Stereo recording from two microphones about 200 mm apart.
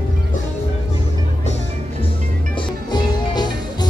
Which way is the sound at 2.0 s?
25° left (ahead or behind).